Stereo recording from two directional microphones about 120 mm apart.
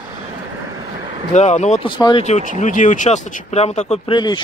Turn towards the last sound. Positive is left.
turn(degrees=40)  # may be behind; listen again after turning